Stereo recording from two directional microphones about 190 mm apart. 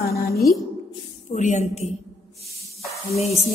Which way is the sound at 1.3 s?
40° left (ahead or behind).